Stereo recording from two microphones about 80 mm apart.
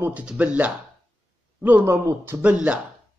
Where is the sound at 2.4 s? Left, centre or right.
Centre.